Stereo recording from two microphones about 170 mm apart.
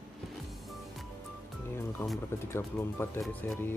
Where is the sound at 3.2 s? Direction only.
5° left (ahead or behind).